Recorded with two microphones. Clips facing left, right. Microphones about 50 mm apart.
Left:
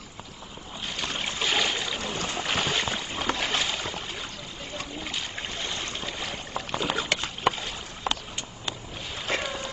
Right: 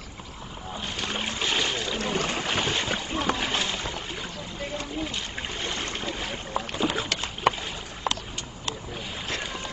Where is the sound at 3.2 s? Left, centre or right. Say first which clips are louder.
Right 1 dB; centre.